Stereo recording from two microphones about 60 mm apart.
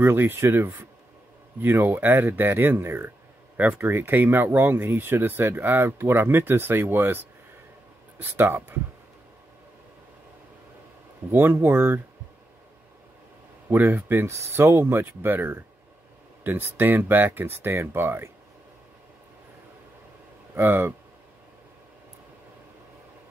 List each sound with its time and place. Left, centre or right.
0.0 s speech: right
3.5 s speech: right
3.8 s speech: right
11.3 s speech: right
13.9 s speech: right
14.3 s speech: right
20.5 s speech: right